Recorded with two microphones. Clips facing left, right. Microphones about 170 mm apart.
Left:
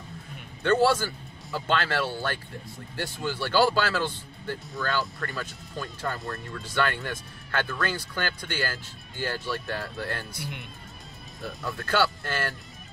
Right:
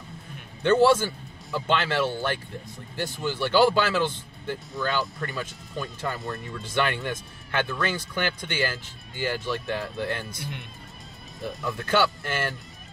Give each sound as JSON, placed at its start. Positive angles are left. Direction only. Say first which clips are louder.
{"t": 0.7, "sound": "speech", "louder": "right 3 dB", "side_deg": -20}
{"t": 11.6, "sound": "speech", "louder": "right 2 dB", "side_deg": -20}